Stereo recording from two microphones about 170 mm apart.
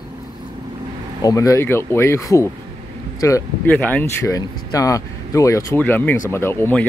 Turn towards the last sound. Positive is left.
turn(degrees=10)  # may be behind; listen again after turning